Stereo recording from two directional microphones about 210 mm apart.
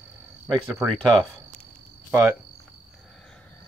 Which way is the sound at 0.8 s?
5° right (ahead or behind).